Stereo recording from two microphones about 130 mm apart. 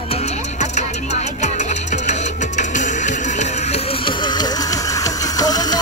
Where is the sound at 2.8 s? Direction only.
65° left (ahead or behind).